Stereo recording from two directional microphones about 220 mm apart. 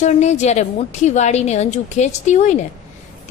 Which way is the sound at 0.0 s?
30° left (ahead or behind).